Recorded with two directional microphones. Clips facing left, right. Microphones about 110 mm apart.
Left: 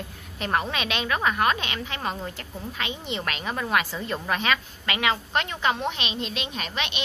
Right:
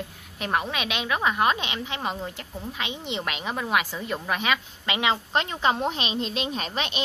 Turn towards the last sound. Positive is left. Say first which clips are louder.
# right 2 dB
turn(degrees=-35)  # may be behind; listen again after turning